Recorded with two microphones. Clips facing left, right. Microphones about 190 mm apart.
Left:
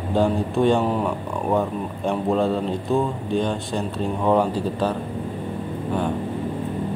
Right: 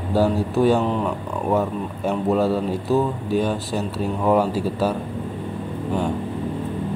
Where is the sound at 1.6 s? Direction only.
5° right (ahead or behind).